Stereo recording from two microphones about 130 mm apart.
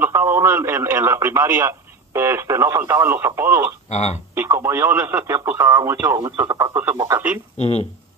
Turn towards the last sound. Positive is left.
turn(degrees=50)  # may be behind; listen again after turning